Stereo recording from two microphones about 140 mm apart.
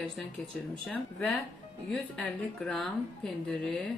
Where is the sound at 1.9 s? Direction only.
5° left (ahead or behind).